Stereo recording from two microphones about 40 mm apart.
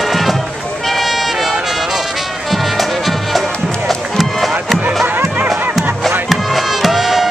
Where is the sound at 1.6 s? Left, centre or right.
Centre.